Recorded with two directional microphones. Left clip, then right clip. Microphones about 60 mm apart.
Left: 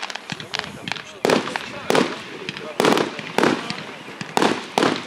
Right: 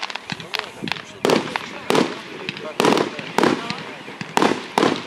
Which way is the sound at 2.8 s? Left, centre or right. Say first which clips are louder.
Even; left.